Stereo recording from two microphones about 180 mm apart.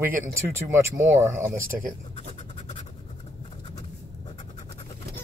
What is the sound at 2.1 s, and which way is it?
Scratch, 40° left (ahead or behind).